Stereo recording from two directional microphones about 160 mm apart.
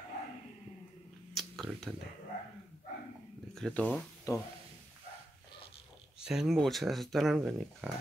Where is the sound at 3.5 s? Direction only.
5° left (ahead or behind).